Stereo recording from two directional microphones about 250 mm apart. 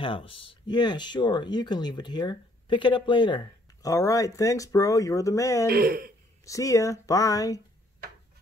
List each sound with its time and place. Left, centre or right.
0.0 s speech: left
5.7 s speech: right
6.4 s speech: centre